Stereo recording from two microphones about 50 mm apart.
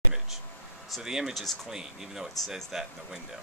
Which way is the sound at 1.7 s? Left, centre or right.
Centre.